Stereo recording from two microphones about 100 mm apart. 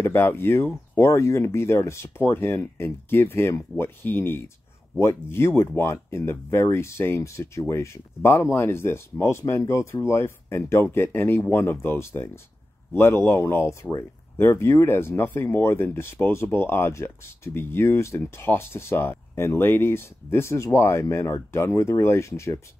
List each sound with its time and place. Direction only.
0.0 s speech: 20° left (ahead or behind)